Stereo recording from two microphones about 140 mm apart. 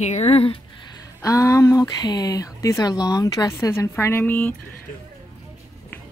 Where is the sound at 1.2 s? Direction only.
25° left (ahead or behind).